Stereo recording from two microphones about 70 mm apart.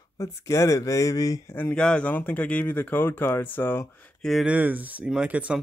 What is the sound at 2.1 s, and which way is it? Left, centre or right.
Speech, left.